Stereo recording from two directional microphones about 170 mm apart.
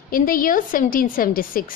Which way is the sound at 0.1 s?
55° left (ahead or behind).